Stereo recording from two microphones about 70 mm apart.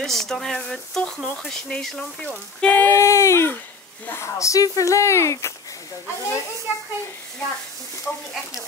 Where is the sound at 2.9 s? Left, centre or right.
Left.